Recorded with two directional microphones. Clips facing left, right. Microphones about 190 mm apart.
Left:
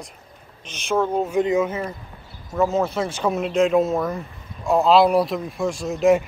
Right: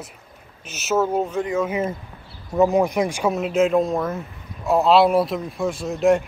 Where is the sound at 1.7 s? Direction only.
20° right (ahead or behind).